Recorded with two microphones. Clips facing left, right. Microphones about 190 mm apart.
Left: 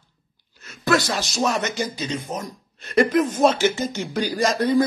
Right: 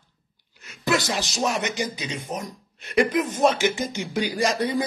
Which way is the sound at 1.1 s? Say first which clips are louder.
Left 2 dB; 15° right (ahead or behind).